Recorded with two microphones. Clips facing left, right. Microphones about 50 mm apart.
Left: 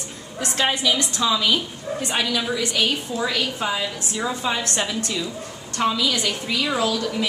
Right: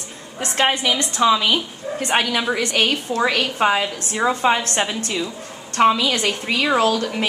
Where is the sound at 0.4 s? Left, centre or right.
Right.